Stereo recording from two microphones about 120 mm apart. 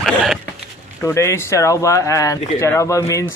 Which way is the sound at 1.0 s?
25° left (ahead or behind).